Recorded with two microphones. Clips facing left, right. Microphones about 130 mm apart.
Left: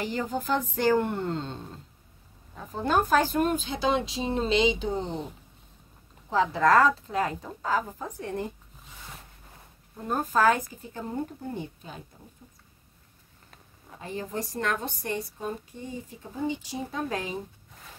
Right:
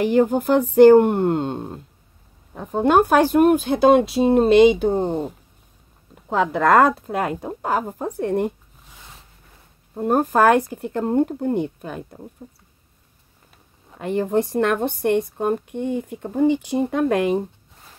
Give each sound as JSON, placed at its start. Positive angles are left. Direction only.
{"t": 0.0, "sound": "a woman's voice", "side_deg": -55}
{"t": 6.3, "sound": "a woman's voice", "side_deg": -60}
{"t": 9.9, "sound": "a woman's voice", "side_deg": -50}
{"t": 13.9, "sound": "a woman's voice", "side_deg": -65}